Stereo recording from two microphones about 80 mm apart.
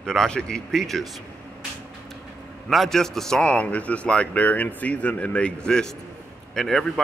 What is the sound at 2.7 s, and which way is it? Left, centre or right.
A man's voice, centre.